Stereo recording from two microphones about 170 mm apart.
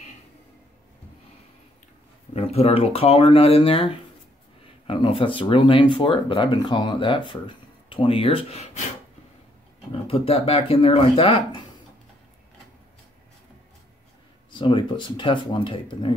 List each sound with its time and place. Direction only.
2.3 s speech: 40° left (ahead or behind)
10.0 s speech: 35° left (ahead or behind)
14.5 s speech: 30° left (ahead or behind)